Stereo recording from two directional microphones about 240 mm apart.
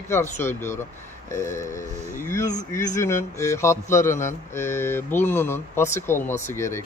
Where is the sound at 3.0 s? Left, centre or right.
Centre.